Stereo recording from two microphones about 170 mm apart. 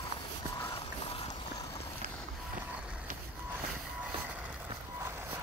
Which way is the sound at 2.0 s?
45° right (ahead or behind).